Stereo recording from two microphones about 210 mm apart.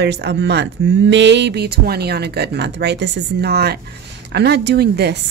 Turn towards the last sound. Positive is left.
turn(degrees=-50)  # may be behind; listen again after turning